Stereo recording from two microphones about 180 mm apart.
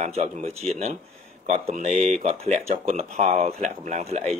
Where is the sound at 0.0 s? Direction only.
40° right (ahead or behind).